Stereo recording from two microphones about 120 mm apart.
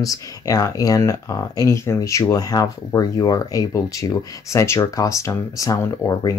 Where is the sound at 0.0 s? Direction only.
30° left (ahead or behind).